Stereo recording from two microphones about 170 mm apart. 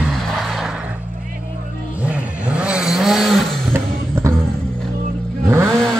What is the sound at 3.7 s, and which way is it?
Vehicle, 15° right (ahead or behind).